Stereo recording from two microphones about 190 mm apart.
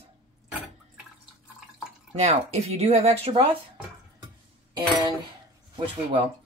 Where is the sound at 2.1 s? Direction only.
35° right (ahead or behind).